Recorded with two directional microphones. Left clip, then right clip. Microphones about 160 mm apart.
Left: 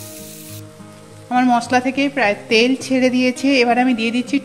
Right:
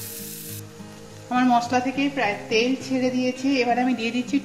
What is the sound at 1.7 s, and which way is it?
A woman's voice, 90° left.